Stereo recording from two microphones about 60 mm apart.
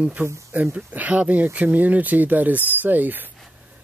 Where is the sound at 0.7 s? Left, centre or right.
Right.